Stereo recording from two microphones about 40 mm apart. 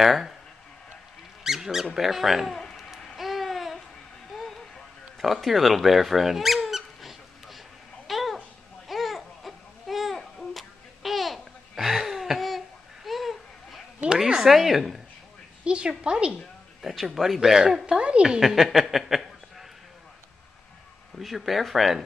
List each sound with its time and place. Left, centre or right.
0.0 s speech: centre
1.4 s squeak: centre
2.0 s a sound: centre
3.2 s babbling: centre
4.3 s vehicle: centre
5.2 s squeak: centre
8.1 s babbling: centre
14.1 s a woman's voice: centre
15.6 s a woman's voice: right
16.8 s speech: centre; by 18.4 s right
18.4 s a sound: centre
21.2 s a sound: centre